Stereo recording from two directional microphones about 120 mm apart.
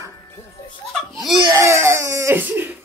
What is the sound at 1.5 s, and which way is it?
Crying, 25° right (ahead or behind).